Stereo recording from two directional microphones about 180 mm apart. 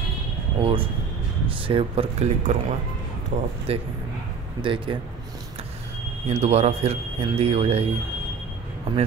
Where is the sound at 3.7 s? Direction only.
35° right (ahead or behind).